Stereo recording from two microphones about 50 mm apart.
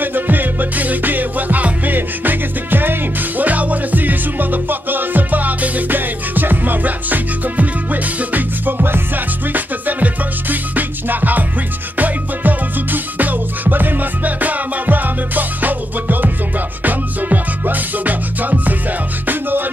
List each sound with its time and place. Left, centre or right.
0.0 s music: right